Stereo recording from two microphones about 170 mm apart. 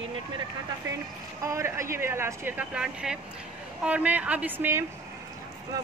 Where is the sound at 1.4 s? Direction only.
15° right (ahead or behind).